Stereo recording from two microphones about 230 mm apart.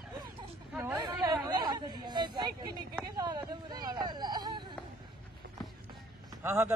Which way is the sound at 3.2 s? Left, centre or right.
Centre.